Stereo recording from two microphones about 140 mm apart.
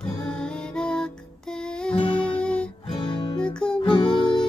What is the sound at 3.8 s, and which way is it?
Music, 35° left (ahead or behind).